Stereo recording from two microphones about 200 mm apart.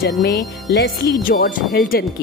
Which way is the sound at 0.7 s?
50° left (ahead or behind).